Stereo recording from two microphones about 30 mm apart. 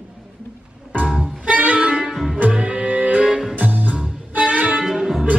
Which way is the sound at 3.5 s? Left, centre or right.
Right.